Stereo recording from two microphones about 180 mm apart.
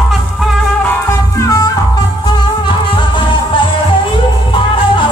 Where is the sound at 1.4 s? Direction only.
20° left (ahead or behind).